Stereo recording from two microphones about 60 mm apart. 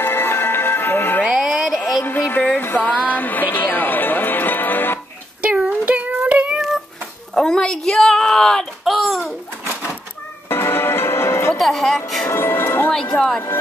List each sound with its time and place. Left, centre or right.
0.0 s music: left
1.3 s music: centre
2.0 s music: left
5.4 s a sound: right
7.3 s a sound: centre
10.5 s music: left
11.5 s speech: centre
12.3 s music: left
13.1 s a woman's voice: centre